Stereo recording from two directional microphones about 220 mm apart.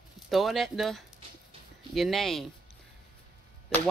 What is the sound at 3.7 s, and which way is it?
Speech, 10° left (ahead or behind).